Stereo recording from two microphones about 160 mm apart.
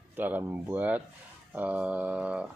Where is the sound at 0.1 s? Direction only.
10° right (ahead or behind).